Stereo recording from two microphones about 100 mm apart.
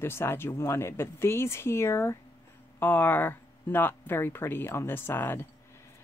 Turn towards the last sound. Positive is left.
turn(degrees=20)  # may be behind; listen again after turning